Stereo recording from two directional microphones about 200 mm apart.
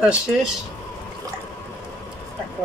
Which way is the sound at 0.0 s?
5° right (ahead or behind).